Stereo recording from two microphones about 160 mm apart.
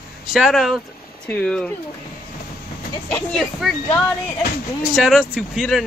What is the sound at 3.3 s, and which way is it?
Speech, 5° left (ahead or behind).